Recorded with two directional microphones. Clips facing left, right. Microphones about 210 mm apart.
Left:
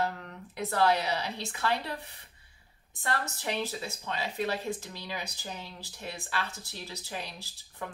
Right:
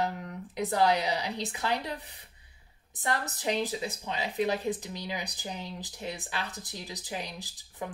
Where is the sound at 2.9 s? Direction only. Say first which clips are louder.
Right 1 dB; 20° right (ahead or behind).